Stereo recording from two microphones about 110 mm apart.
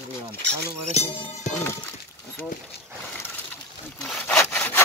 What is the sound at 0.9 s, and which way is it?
Music, 75° left (ahead or behind).